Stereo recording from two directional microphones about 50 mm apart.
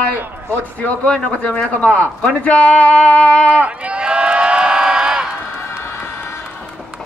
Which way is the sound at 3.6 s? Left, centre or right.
Right.